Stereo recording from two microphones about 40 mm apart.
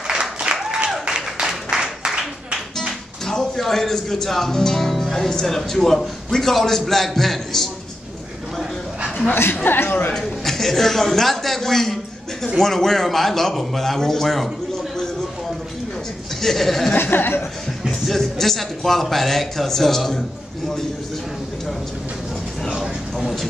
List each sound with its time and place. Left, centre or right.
0.2 s applause: right
1.4 s music: centre
3.3 s speech: centre
9.3 s a woman's voice: left
9.8 s speech: left
10.1 s speech: centre
16.3 s speech: centre
16.9 s speech: left
18.0 s speech: centre